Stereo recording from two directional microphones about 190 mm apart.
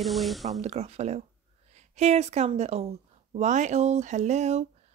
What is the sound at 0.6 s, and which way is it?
Speech, 35° right (ahead or behind).